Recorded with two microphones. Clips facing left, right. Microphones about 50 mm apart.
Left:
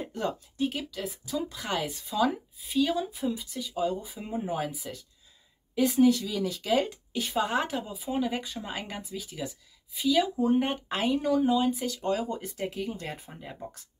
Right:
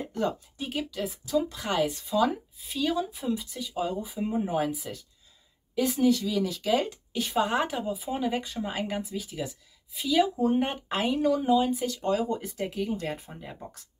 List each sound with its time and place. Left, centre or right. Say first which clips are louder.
0.1 s speech: right 3 dB; centre